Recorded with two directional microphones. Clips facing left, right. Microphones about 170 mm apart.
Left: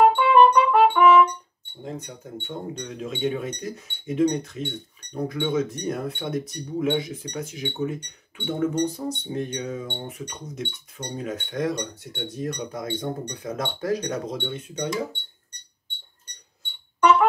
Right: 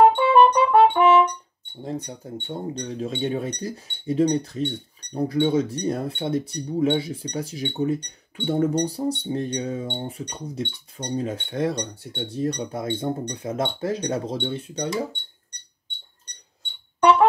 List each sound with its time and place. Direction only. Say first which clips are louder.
0.0 s music: right 1 dB; 30° right (ahead or behind)
2.2 s speech: even; 35° right (ahead or behind)